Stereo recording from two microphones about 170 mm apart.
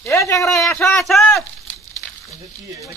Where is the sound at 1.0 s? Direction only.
Centre (ahead or behind).